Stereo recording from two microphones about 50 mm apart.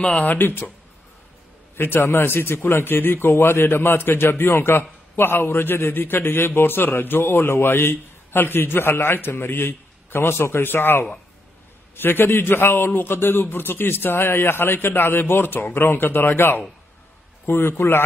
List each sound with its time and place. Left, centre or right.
0.2 s speech: left
1.8 s a man's voice: left